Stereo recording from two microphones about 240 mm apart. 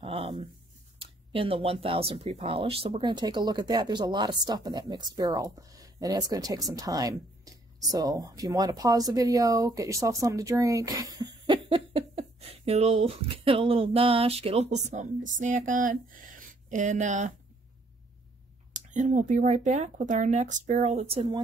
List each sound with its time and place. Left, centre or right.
0.0 s a sound: right
0.9 s speech: right
18.7 s speech: right